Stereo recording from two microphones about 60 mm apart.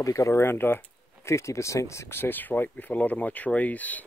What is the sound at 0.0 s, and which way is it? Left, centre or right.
Speech, left.